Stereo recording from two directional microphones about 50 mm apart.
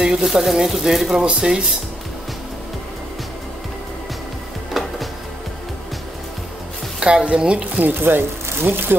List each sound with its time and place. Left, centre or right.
0.0 s speech: centre
4.7 s music: centre
7.0 s speech: centre
7.8 s speech: right